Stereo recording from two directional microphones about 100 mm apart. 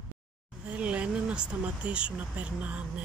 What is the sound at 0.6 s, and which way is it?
Speech, 10° right (ahead or behind).